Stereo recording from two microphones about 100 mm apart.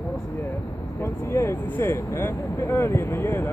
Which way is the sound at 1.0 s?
30° left (ahead or behind).